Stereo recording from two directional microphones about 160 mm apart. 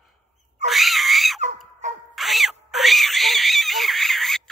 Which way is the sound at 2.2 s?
Centre (ahead or behind).